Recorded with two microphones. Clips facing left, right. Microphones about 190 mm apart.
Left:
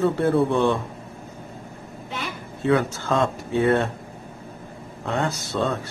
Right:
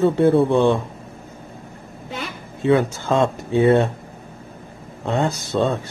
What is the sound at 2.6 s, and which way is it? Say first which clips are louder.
A man's voice: right 4 dB; 20° right (ahead or behind).